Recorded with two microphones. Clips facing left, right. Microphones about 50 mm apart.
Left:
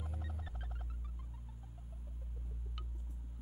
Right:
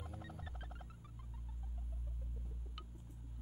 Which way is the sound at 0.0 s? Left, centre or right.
Centre.